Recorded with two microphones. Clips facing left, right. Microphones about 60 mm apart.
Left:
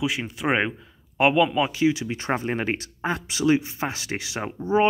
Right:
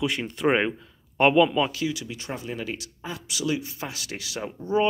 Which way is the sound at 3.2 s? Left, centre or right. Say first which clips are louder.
Left 6 dB; left.